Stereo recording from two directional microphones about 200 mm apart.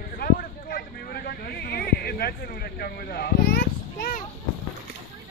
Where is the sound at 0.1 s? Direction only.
45° left (ahead or behind).